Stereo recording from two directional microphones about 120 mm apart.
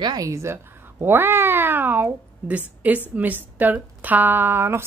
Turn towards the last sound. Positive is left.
turn(degrees=-20)  # may be behind; listen again after turning